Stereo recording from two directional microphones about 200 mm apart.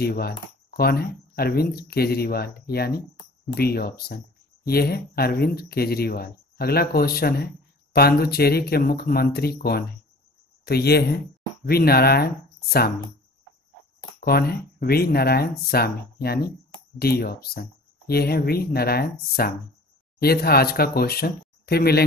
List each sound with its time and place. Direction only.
0.0 s speech: 50° left (ahead or behind)
14.2 s speech: 50° left (ahead or behind)